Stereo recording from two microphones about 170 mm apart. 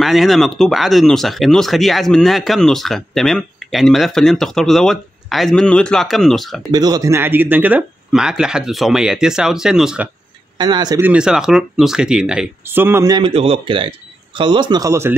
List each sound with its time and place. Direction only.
0.0 s speech: centre (ahead or behind)
6.7 s speech: 25° right (ahead or behind); by 10.0 s 5° right (ahead or behind)
10.6 s speech: 25° right (ahead or behind)
11.0 s speech: 10° right (ahead or behind)
13.2 s speech: 35° right (ahead or behind); by 15.1 s 15° right (ahead or behind)